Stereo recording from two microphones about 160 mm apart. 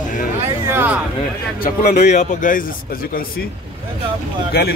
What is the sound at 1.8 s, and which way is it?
Speech, 50° left (ahead or behind).